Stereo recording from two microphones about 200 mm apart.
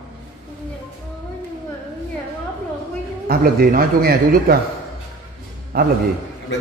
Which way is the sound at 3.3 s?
45° right (ahead or behind).